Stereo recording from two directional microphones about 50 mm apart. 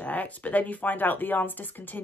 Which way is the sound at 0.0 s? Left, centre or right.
Left.